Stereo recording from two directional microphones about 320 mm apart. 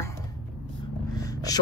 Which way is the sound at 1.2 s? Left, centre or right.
Centre.